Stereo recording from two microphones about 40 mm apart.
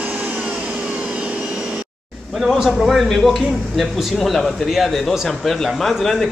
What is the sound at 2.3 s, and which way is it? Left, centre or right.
Speech, centre.